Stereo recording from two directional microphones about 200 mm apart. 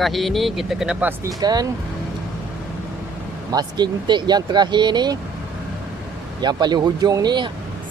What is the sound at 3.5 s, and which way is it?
A man's voice, 20° right (ahead or behind).